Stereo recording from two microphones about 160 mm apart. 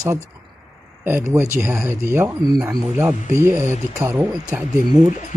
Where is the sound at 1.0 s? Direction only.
15° right (ahead or behind).